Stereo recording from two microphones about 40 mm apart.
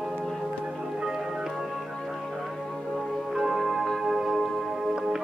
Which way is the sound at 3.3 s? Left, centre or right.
Centre.